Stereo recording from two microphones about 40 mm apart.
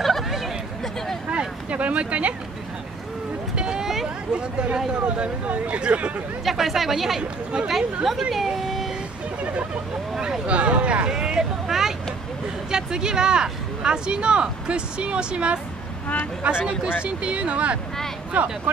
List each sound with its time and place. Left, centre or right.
1.7 s speech: right
3.5 s vehicle: centre
4.3 s speech: right
6.4 s speech: centre
7.2 s speech: centre
7.7 s speech: centre
9.4 s a sound: right
10.4 s speech: right
11.1 s speech: centre
11.6 s vehicle: centre
12.7 s speech: centre